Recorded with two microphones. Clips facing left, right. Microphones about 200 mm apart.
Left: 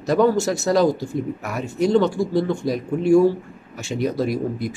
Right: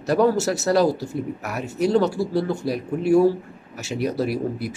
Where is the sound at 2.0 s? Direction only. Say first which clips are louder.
Left 2 dB; 5° right (ahead or behind).